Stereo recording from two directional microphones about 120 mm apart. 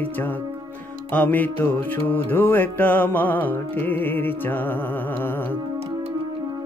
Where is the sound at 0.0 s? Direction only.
15° left (ahead or behind).